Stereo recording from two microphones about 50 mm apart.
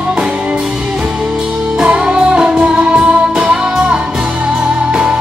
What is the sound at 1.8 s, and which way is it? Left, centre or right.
Music, centre.